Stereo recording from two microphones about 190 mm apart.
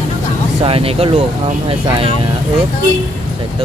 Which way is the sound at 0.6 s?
30° right (ahead or behind).